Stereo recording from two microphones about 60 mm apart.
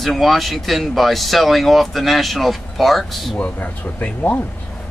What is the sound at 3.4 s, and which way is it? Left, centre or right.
Speech, left.